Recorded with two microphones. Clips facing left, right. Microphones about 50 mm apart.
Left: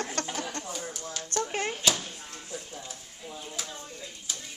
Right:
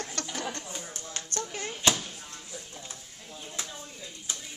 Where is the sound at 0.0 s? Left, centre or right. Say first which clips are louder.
Left 2 dB; left.